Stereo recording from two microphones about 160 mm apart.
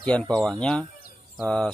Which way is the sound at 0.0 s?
5° left (ahead or behind).